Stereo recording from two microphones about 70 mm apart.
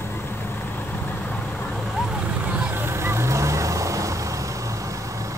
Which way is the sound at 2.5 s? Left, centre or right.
Right.